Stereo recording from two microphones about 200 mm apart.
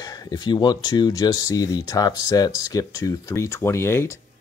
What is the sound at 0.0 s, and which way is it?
Speech, 20° left (ahead or behind).